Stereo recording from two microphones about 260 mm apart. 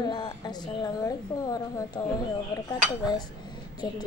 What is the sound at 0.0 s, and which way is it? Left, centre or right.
A woman's voice, centre.